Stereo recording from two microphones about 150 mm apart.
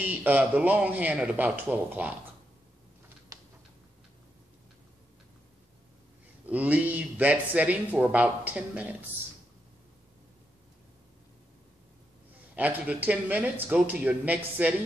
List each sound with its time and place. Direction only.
0.0 s speech: 10° right (ahead or behind)
3.3 s typing: 25° right (ahead or behind)
6.4 s speech: 10° right (ahead or behind)
12.5 s speech: 10° right (ahead or behind)